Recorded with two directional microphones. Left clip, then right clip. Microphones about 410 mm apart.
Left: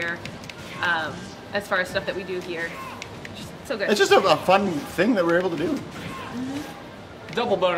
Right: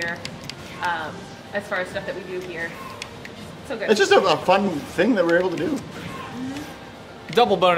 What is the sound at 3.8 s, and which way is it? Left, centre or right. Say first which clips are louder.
Speech: right 1 dB; centre.